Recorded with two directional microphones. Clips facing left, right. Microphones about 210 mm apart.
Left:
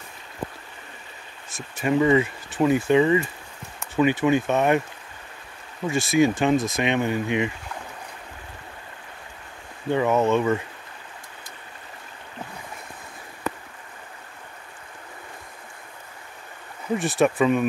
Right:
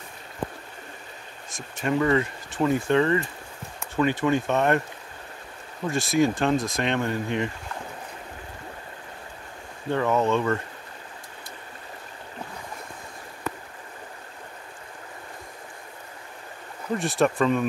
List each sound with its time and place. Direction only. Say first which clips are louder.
1.5 s speech: left 3 dB; 5° left (ahead or behind)
5.9 s speech: left 2 dB; centre (ahead or behind)
9.9 s speech: left 2 dB; 15° left (ahead or behind)
16.9 s speech: left 2 dB; centre (ahead or behind)